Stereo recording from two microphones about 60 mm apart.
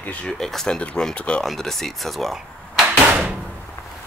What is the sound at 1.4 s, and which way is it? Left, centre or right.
Speech, centre.